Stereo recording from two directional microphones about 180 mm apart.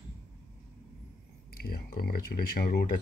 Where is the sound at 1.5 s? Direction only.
55° left (ahead or behind).